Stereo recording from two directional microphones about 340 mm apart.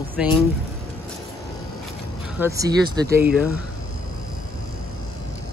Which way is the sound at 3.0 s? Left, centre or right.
Right.